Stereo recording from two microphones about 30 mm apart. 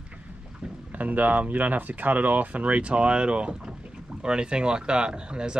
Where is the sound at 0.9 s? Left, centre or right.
Right.